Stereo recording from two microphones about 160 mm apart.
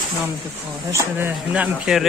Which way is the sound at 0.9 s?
15° right (ahead or behind).